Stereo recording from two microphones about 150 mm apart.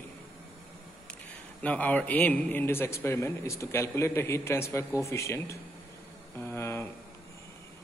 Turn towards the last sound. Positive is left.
turn(degrees=20)  # may be behind; listen again after turning